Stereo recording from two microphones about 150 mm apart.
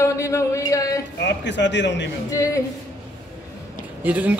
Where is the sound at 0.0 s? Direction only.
20° left (ahead or behind).